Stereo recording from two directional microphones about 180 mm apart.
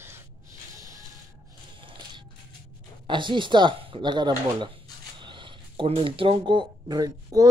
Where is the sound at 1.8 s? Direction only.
30° right (ahead or behind).